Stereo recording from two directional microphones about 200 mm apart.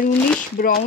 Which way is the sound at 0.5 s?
50° left (ahead or behind).